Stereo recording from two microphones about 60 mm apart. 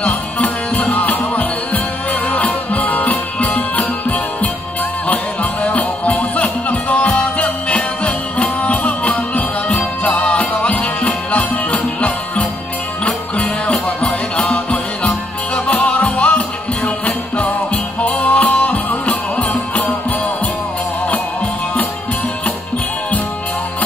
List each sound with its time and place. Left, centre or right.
0.0 s music: left